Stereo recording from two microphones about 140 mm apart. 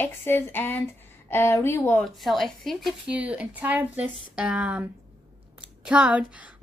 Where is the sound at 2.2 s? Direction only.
Centre (ahead or behind).